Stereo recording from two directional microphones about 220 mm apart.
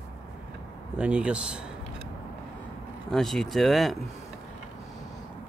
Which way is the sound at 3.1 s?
Centre (ahead or behind).